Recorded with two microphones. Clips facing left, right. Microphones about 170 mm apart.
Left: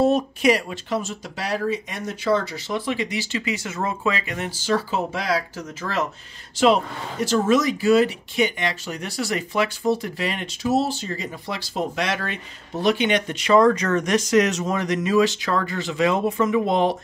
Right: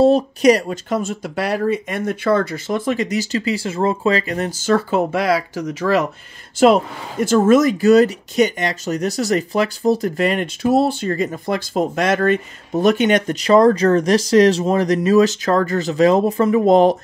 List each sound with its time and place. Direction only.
0.0 s speech: 35° right (ahead or behind); by 6.0 s 70° right (ahead or behind)
6.6 s speech: 50° right (ahead or behind)